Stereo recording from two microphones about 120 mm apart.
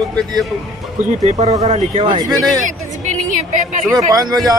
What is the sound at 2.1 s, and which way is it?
Speech, 40° right (ahead or behind).